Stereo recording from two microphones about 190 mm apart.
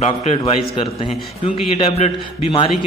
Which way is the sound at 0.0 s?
35° left (ahead or behind).